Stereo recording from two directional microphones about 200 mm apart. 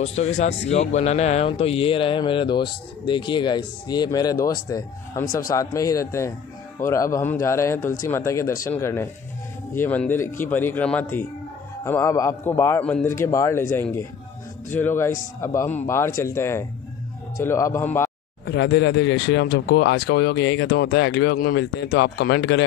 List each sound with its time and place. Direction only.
0.0 s a man's voice: 35° left (ahead or behind); by 18.1 s 10° left (ahead or behind)
18.4 s speech: 60° left (ahead or behind)